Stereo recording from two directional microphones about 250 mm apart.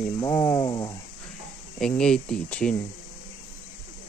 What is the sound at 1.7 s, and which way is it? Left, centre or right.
Speech, centre.